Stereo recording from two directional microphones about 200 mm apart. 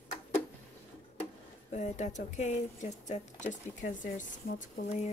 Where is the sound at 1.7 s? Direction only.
35° left (ahead or behind).